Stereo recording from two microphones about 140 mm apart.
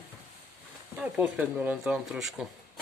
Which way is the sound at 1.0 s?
10° right (ahead or behind).